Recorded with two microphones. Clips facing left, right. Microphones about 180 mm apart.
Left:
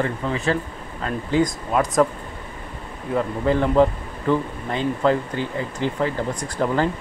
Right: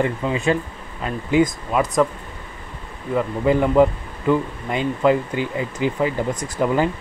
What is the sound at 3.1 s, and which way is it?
Speech, 5° right (ahead or behind).